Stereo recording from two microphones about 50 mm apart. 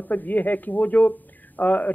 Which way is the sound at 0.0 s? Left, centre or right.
Left.